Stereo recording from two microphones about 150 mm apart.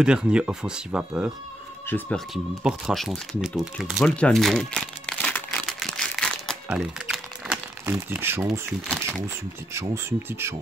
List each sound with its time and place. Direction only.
0.0 s speech: 5° right (ahead or behind)
1.9 s speech: 10° left (ahead or behind)
2.3 s a sound: centre (ahead or behind)
6.8 s crumpling: 5° right (ahead or behind)
7.8 s speech: 15° right (ahead or behind)
8.8 s speech: 5° left (ahead or behind)
9.8 s speech: 15° right (ahead or behind)